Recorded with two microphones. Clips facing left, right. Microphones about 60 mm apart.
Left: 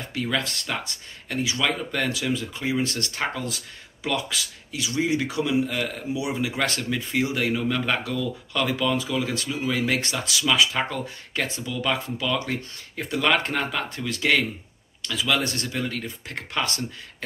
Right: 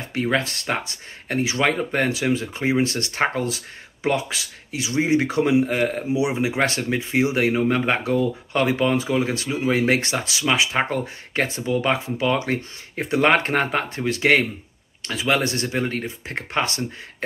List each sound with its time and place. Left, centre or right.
0.1 s speech: right
6.1 s speech: right